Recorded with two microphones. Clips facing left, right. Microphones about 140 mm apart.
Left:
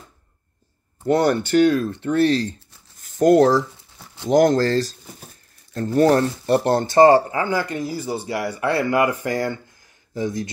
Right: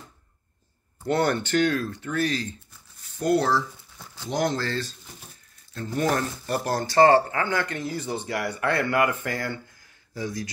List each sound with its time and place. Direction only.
1.1 s speech: 15° left (ahead or behind)
1.9 s speech: 30° left (ahead or behind)
3.0 s speech: 45° left (ahead or behind); by 8.3 s 10° left (ahead or behind)
8.6 s speech: 25° left (ahead or behind)